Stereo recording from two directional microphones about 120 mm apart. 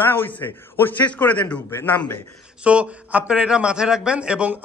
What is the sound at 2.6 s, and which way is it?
A man's voice, 10° right (ahead or behind).